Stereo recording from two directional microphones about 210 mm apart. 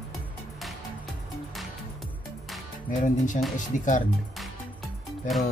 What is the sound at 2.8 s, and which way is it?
Speech, 40° left (ahead or behind).